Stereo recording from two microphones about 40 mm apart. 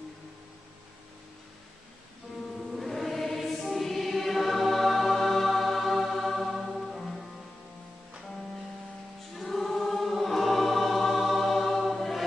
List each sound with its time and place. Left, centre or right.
2.7 s choir: centre
3.6 s music: centre
9.4 s choir: centre